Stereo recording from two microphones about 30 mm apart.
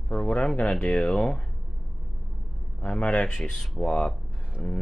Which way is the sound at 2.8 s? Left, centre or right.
Left.